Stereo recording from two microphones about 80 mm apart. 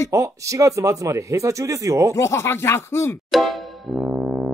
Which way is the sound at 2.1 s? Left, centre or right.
Left.